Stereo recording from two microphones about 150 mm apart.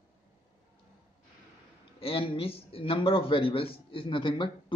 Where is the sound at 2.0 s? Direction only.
40° left (ahead or behind).